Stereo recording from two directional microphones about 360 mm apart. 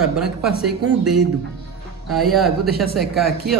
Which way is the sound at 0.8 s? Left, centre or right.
Right.